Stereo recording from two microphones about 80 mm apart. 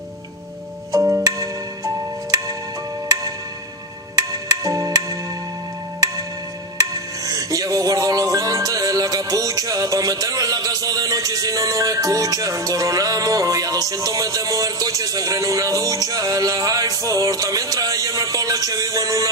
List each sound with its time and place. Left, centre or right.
4.1 s music: right
6.8 s music: right